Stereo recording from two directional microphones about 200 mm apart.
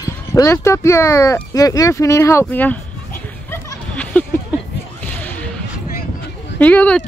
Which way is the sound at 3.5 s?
10° left (ahead or behind).